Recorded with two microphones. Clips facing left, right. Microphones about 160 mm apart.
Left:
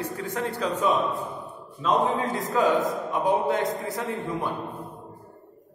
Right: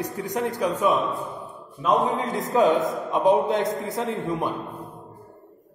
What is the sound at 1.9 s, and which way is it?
A man's voice, 20° right (ahead or behind).